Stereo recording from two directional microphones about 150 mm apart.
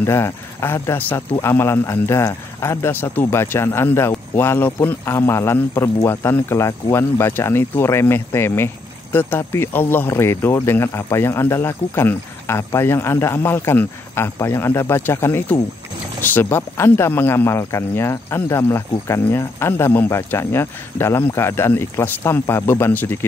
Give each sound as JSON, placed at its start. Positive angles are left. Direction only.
{"t": 0.0, "sound": "speech", "side_deg": 15}